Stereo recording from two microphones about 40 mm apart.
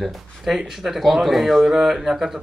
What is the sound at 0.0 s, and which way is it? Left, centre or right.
Speech, centre.